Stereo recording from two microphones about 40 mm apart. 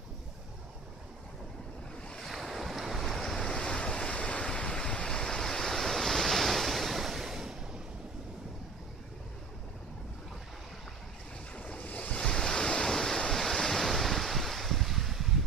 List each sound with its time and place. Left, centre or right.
2.2 s waves: centre
3.1 s waves: centre
3.4 s waves: left; by 7.5 s centre
11.5 s waves: left
12.2 s waves: centre